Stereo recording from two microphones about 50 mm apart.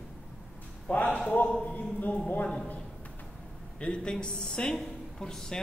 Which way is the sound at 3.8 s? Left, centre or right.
Centre.